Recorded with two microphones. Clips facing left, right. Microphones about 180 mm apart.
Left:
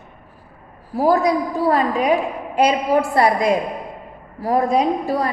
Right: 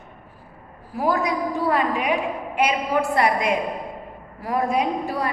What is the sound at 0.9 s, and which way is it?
A woman's voice, 35° left (ahead or behind).